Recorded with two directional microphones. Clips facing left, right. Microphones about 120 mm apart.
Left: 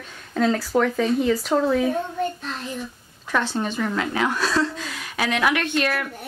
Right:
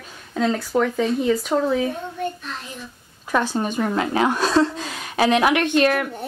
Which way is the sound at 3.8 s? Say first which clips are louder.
Right 5 dB; 25° right (ahead or behind).